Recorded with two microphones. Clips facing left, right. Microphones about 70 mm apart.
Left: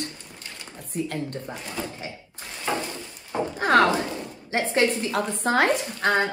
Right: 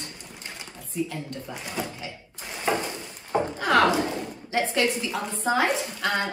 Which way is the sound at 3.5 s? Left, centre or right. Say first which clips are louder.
Left 3 dB; left.